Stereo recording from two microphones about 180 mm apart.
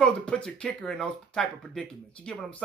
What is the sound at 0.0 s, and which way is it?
Speech, 5° left (ahead or behind).